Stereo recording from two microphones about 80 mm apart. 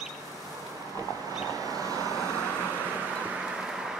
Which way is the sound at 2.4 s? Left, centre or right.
Centre.